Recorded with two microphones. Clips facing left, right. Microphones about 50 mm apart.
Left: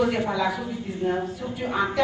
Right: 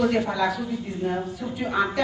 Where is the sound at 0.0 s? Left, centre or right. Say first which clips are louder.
Right 1 dB; centre.